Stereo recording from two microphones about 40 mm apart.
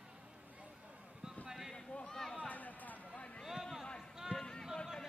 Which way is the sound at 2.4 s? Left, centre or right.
Left.